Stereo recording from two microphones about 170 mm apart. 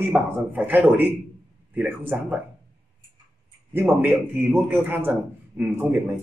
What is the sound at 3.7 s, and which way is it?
A man's voice, 15° right (ahead or behind).